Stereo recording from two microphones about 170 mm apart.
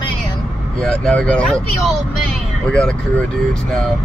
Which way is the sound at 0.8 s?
5° left (ahead or behind).